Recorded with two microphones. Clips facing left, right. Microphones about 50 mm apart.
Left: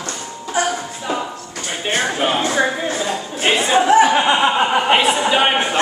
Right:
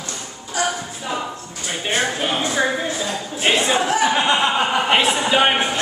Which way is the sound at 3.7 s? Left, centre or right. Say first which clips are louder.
Left 6 dB; left.